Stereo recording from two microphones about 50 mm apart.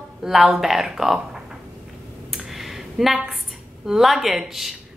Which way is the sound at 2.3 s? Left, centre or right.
Centre.